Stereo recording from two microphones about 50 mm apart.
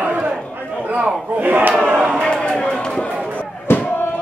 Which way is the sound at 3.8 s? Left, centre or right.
Left.